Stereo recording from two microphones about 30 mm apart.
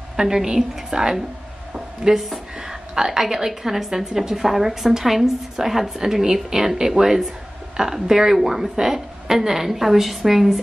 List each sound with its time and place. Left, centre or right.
0.1 s a woman's voice: centre
2.1 s speech: centre
2.6 s a woman's voice: centre